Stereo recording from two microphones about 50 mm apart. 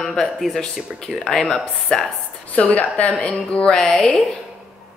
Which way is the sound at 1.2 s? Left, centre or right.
Centre.